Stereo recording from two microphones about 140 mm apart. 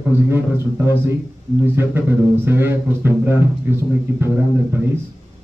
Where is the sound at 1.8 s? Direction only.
15° right (ahead or behind).